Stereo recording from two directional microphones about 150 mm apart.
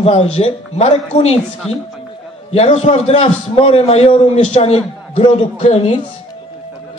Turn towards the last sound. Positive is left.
turn(degrees=45)  # may be behind; listen again after turning